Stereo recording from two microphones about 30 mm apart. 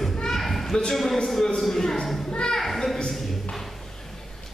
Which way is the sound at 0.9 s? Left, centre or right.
Centre.